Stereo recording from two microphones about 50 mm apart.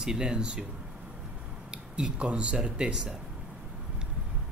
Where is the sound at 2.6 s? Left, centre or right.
Centre.